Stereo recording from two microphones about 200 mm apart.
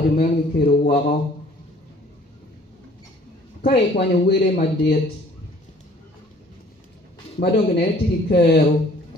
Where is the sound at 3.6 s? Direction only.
55° left (ahead or behind).